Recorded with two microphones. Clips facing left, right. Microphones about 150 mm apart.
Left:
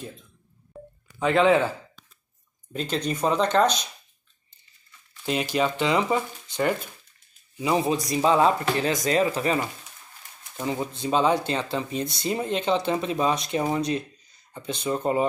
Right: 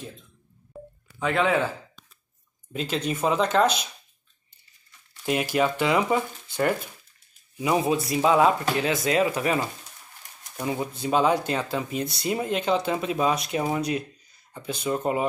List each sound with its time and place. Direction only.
0.7 s telephone dialing: 5° right (ahead or behind)
1.2 s speech: 20° left (ahead or behind)
2.7 s speech: 5° right (ahead or behind)
5.2 s a man's voice: 10° right (ahead or behind)